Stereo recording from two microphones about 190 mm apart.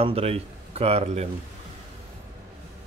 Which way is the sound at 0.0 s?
30° right (ahead or behind).